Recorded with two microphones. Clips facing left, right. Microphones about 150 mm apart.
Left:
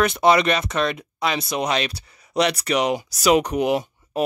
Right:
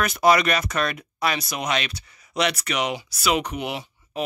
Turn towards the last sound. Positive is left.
turn(degrees=40)  # may be behind; listen again after turning